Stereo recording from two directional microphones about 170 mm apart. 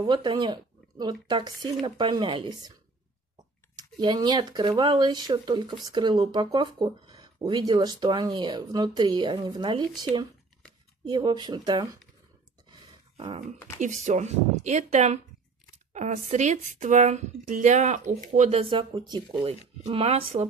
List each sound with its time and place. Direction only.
0.0 s speech: 25° right (ahead or behind)
3.7 s speech: 25° right (ahead or behind)
11.1 s speech: 25° right (ahead or behind)
13.2 s speech: 35° right (ahead or behind)
18.6 s speech: 30° right (ahead or behind)